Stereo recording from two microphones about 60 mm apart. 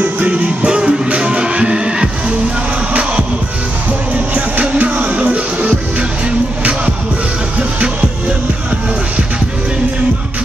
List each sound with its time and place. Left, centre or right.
0.0 s music: right
4.3 s music: right